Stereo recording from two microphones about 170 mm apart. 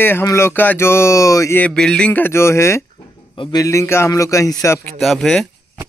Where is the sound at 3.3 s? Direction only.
25° left (ahead or behind).